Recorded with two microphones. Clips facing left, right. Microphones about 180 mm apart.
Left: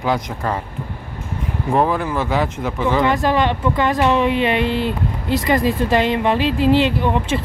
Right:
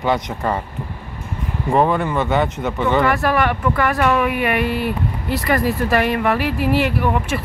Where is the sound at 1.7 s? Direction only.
Centre (ahead or behind).